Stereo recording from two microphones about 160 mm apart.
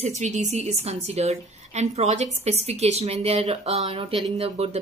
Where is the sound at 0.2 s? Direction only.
45° right (ahead or behind).